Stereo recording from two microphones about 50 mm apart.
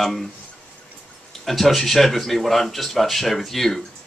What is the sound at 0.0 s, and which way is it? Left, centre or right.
Speech, centre.